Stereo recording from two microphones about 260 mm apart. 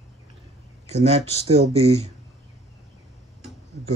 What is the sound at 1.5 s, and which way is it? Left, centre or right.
Speech, right.